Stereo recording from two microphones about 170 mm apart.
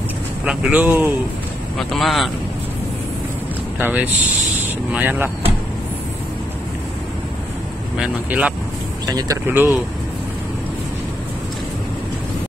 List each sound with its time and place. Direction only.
0.5 s speech: 10° right (ahead or behind)
1.8 s speech: centre (ahead or behind)
3.8 s speech: 10° right (ahead or behind)
8.0 s speech: 5° right (ahead or behind)
9.0 s speech: 25° right (ahead or behind)
9.5 s speech: 10° right (ahead or behind)